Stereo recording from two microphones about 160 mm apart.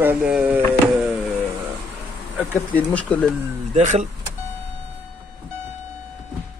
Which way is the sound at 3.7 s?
45° right (ahead or behind).